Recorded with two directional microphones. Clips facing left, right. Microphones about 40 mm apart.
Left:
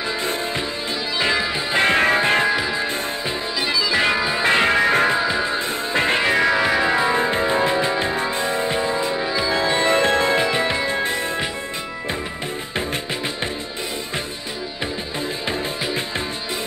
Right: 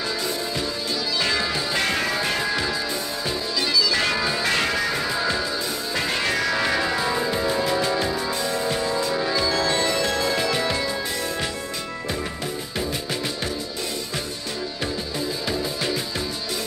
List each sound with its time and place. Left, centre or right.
1.2 s music: left
2.5 s music: centre